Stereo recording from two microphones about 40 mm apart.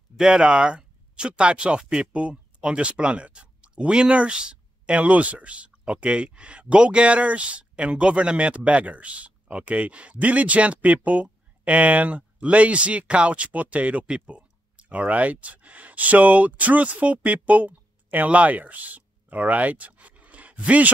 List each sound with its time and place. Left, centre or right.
0.2 s speech: right